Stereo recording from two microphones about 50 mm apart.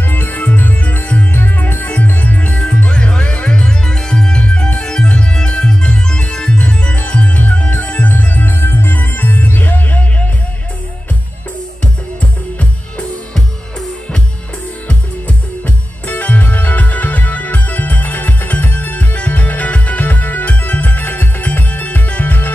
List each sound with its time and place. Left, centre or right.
0.1 s music: left
1.3 s music: left; by 4.4 s centre
4.4 s music: left
14.9 s music: left